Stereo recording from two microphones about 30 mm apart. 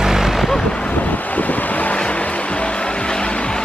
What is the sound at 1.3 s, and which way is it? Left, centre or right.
Vehicle, left.